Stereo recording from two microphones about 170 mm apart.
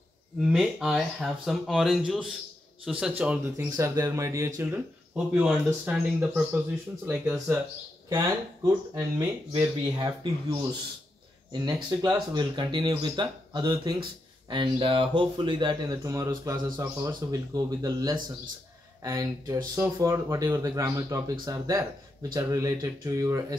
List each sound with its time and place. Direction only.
0.4 s speech: 5° right (ahead or behind)
8.6 s speech: 20° right (ahead or behind)
11.5 s speech: 20° right (ahead or behind)